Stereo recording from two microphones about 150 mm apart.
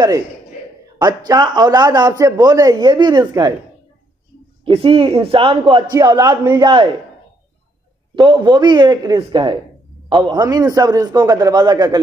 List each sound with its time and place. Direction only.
0.9 s a man's voice: 25° right (ahead or behind)
4.6 s a man's voice: 35° right (ahead or behind)
8.2 s a man's voice: 30° right (ahead or behind)